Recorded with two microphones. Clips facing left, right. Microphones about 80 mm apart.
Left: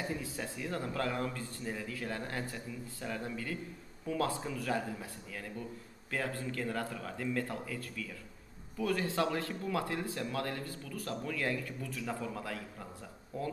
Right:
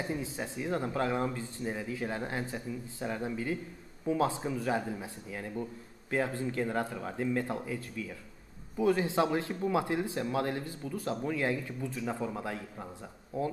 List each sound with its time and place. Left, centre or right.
0.1 s a man's voice: right